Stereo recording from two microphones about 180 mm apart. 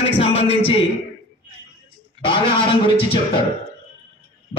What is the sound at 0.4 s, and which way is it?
Speech, 35° left (ahead or behind).